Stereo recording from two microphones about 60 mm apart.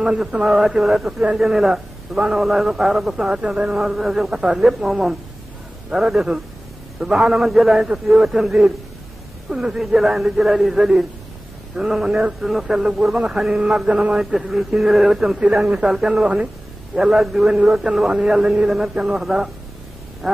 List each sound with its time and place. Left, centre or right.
0.2 s a man's voice: centre
17.9 s speech: right
18.2 s a man's voice: centre